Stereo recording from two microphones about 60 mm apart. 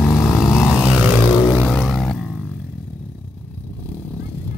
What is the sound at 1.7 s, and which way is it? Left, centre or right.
Vehicle, centre.